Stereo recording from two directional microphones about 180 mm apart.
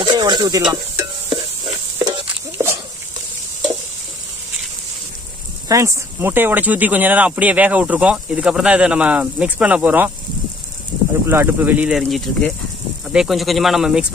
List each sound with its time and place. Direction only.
0.0 s a sound: 25° right (ahead or behind)
2.5 s dog: 15° right (ahead or behind)
5.7 s speech: 15° right (ahead or behind)
11.2 s speech: 10° right (ahead or behind)